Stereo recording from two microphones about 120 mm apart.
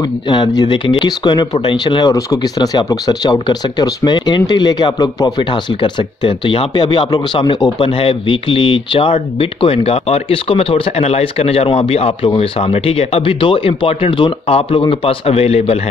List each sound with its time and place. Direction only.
0.3 s speech: 35° left (ahead or behind); by 15.8 s 55° left (ahead or behind)